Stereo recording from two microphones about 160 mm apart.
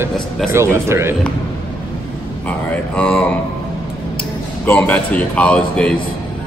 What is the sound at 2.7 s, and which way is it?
Speech, 5° left (ahead or behind).